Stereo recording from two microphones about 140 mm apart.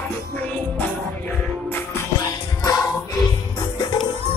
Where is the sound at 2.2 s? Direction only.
25° left (ahead or behind).